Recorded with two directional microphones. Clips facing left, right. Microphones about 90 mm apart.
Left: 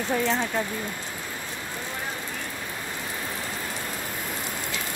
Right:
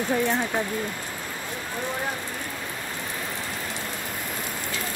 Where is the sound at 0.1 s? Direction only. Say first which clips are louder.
Even; 10° right (ahead or behind).